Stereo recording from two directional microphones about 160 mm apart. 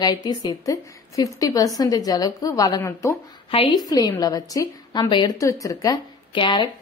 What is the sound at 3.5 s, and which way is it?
A woman's voice, 30° left (ahead or behind).